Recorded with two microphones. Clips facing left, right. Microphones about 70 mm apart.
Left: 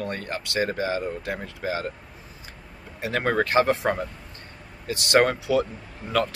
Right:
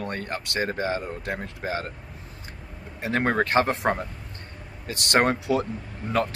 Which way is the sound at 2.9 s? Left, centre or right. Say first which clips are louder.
Even; right.